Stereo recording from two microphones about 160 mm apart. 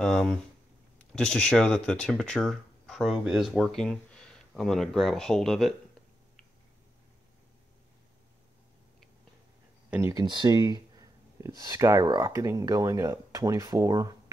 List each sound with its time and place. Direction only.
0.0 s speech: 5° left (ahead or behind)
9.8 s speech: 15° right (ahead or behind)
10.2 s speech: 30° right (ahead or behind)